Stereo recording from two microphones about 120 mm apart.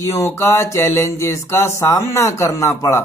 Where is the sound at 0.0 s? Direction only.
20° left (ahead or behind).